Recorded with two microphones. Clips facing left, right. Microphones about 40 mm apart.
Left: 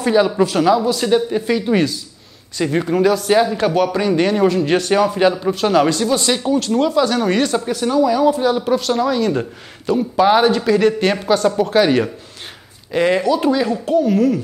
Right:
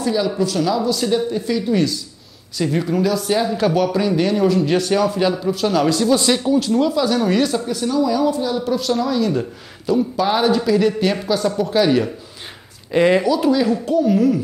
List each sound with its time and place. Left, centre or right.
0.0 s speech: left
0.7 s speech: left
2.5 s speech: left
5.9 s speech: centre
7.6 s speech: left
8.4 s speech: left
8.6 s speech: left
12.9 s speech: centre
13.3 s speech: centre
14.1 s speech: centre